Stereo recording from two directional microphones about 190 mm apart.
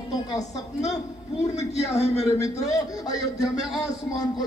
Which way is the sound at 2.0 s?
35° left (ahead or behind).